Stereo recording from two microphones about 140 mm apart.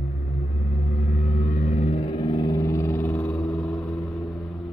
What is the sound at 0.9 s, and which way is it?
Vehicle, 55° left (ahead or behind).